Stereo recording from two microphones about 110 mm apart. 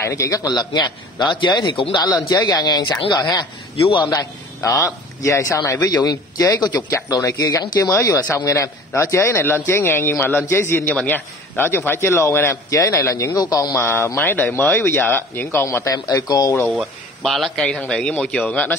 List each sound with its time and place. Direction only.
0.0 s a man's voice: 30° left (ahead or behind)
17.2 s a man's voice: centre (ahead or behind)